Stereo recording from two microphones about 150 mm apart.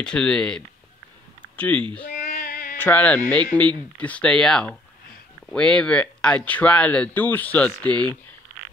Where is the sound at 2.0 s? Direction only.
65° left (ahead or behind).